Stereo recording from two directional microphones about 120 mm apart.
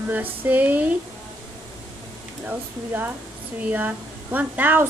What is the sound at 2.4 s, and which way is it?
A woman's voice, 15° right (ahead or behind).